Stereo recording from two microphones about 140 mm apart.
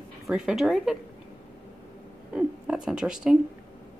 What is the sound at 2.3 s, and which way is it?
Speech, 5° right (ahead or behind).